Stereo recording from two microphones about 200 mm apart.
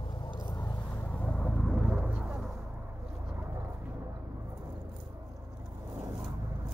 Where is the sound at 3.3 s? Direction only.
10° right (ahead or behind).